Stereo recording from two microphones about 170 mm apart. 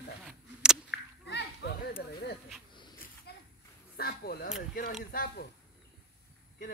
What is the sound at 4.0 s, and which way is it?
Speech, 60° left (ahead or behind).